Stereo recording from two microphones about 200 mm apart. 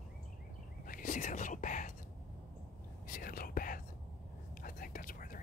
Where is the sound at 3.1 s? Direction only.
45° left (ahead or behind).